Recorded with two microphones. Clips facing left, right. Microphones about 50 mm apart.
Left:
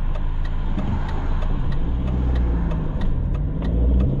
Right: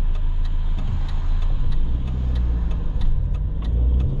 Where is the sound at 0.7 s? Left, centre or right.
Left.